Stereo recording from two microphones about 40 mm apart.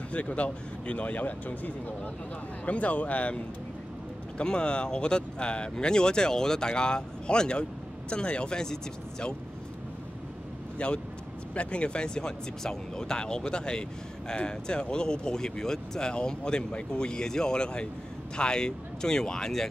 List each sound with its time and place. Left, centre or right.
0.1 s speech: left
4.4 s speech: left
10.8 s speech: left; by 19.7 s centre